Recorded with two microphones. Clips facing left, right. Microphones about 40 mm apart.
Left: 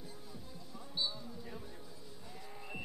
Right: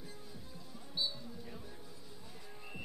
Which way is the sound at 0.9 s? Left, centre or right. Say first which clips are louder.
Even; centre.